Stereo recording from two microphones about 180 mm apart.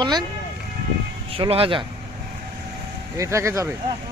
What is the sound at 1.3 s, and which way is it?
Speech, 30° right (ahead or behind).